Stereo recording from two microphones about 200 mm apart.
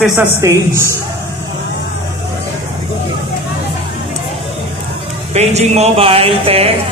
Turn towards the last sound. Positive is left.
turn(degrees=-30)  # may be behind; listen again after turning